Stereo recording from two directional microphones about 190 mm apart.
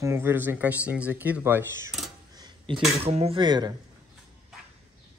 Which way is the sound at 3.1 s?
30° right (ahead or behind).